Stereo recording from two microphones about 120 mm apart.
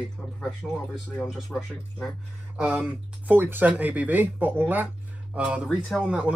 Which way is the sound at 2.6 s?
10° right (ahead or behind).